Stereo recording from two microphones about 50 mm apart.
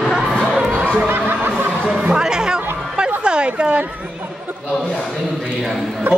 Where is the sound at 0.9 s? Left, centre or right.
Right.